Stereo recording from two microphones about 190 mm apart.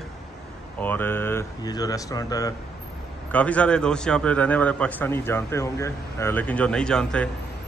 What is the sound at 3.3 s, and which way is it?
A man's voice, 5° left (ahead or behind).